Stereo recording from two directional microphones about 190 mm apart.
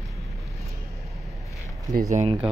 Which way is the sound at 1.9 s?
40° right (ahead or behind).